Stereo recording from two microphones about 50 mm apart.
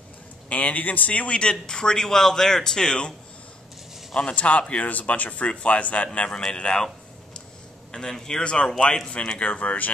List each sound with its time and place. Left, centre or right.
0.5 s speech: left
6.1 s speech: centre
7.9 s speech: centre; by 9.9 s left